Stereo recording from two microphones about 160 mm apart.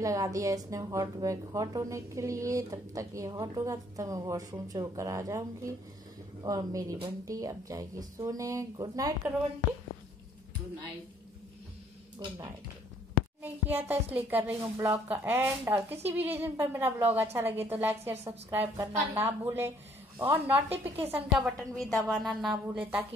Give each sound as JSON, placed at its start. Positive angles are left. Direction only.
{"t": 0.0, "sound": "speech", "side_deg": -20}
{"t": 12.3, "sound": "a woman's voice", "side_deg": -15}